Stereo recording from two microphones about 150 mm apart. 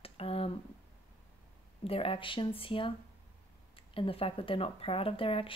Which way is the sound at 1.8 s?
40° left (ahead or behind).